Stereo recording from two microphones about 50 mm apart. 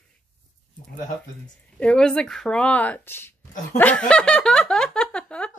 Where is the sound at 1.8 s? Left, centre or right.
Centre.